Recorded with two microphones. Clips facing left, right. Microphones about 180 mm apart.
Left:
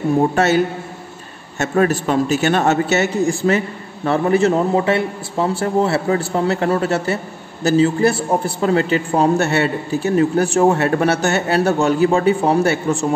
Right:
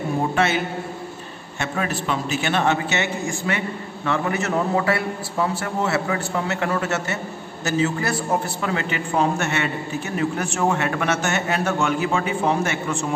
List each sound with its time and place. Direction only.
1.6 s a man's voice: 45° left (ahead or behind)